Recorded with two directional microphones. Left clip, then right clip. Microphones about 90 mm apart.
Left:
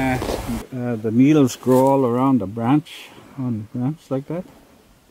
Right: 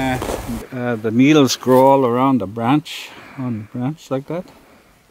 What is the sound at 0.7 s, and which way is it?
Speech, 25° right (ahead or behind).